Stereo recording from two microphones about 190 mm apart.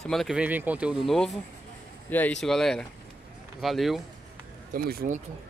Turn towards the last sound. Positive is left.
turn(degrees=-50)  # may be behind; listen again after turning